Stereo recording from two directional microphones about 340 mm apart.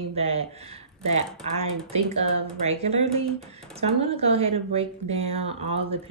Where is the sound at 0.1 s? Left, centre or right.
Centre.